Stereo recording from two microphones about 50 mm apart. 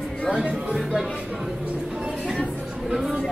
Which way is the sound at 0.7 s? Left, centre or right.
Centre.